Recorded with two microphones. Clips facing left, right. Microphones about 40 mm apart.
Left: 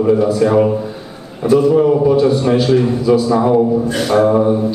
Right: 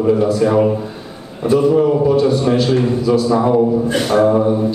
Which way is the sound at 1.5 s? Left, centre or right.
Centre.